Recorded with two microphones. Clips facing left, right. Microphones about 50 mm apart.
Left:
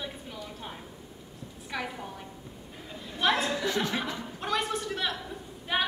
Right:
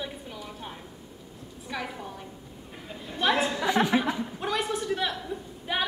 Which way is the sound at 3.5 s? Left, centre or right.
Right.